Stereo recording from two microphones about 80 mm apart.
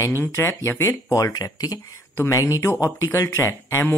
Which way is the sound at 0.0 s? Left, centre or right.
Left.